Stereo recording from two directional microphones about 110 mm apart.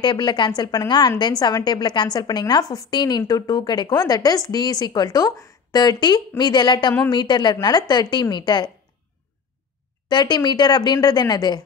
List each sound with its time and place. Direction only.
0.0 s a woman's voice: 45° left (ahead or behind)
10.0 s a woman's voice: 40° left (ahead or behind)